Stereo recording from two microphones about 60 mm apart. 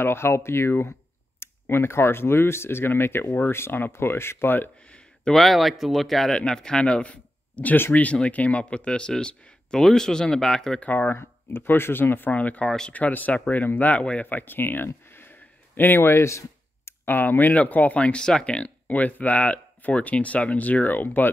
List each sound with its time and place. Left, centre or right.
0.0 s speech: left
4.9 s a sound: centre
5.4 s speech: centre
10.8 s speech: left
12.6 s speech: centre
12.9 s speech: left
15.0 s a sound: left
17.0 s speech: left